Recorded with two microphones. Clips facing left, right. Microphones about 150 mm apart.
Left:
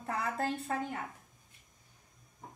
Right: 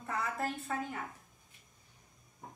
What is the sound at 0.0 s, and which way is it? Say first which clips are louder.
Speech: left 2 dB; 35° left (ahead or behind).